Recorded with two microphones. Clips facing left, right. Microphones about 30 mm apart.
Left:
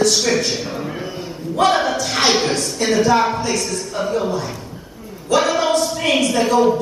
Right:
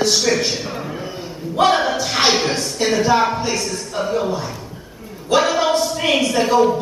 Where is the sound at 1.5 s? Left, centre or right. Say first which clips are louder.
Even; centre.